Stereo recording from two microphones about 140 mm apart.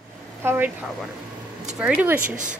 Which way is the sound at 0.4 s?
15° right (ahead or behind).